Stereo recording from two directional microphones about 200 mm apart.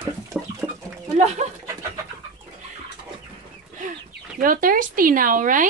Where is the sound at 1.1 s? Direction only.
35° right (ahead or behind).